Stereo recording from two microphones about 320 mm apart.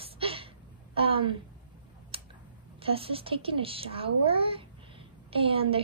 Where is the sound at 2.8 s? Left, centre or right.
Centre.